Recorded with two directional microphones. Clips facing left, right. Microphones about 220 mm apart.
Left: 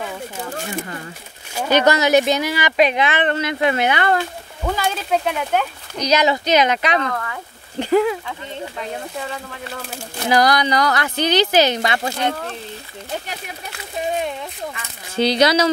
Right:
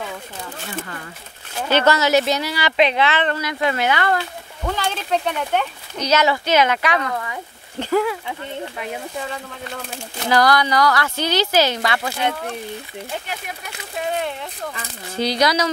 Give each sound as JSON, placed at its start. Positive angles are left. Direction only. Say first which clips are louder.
{"t": 1.5, "sound": "speech", "louder": "left 2 dB", "side_deg": 10}
{"t": 4.6, "sound": "speech", "louder": "left 2 dB", "side_deg": 10}
{"t": 8.7, "sound": "speech", "louder": "even", "side_deg": -5}
{"t": 10.2, "sound": "speech", "louder": "left 1 dB", "side_deg": 15}
{"t": 12.1, "sound": "speech", "louder": "left 1 dB", "side_deg": -10}
{"t": 15.1, "sound": "speech", "louder": "left 4 dB", "side_deg": 25}